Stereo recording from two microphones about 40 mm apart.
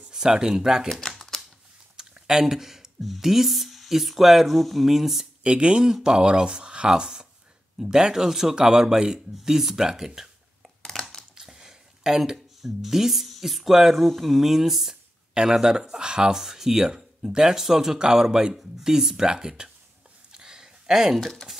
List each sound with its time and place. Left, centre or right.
0.1 s speech: centre
0.8 s speech: centre
2.2 s speech: centre
5.4 s speech: right
10.8 s crushing: centre
11.3 s a sound: centre
14.0 s speech: centre
20.3 s a sound: centre
21.2 s speech: centre